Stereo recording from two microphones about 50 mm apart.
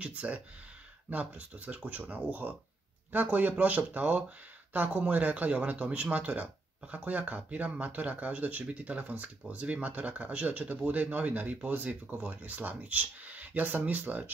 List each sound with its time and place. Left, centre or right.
0.0 s speech: right
1.7 s speech: right